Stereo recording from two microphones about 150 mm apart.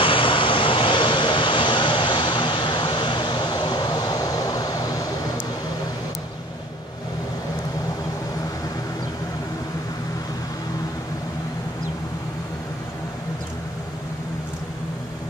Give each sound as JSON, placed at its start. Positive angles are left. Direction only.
{"t": 0.0, "sound": "vehicle", "side_deg": 35}